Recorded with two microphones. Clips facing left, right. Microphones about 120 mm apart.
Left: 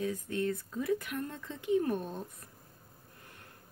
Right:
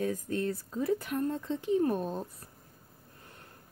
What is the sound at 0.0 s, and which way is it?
Speech, 40° right (ahead or behind).